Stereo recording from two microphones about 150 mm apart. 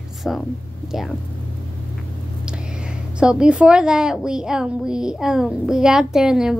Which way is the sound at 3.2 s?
5° right (ahead or behind).